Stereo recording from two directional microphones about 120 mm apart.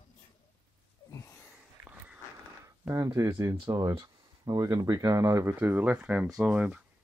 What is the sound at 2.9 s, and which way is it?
Speech, 30° right (ahead or behind).